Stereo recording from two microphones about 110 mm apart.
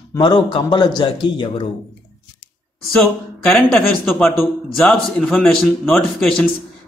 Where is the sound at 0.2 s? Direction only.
45° left (ahead or behind).